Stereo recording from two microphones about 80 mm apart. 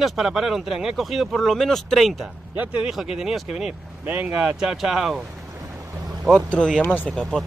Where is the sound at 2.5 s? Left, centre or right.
Centre.